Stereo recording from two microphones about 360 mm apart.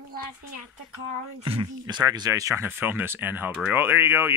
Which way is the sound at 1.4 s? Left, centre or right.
Centre.